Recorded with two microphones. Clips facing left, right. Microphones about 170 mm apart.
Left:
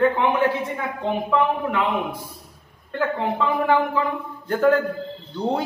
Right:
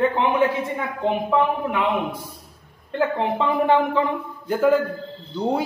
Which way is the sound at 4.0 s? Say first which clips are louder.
Right 2 dB; 25° right (ahead or behind).